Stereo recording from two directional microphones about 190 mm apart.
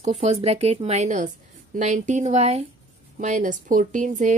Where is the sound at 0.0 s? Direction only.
35° right (ahead or behind).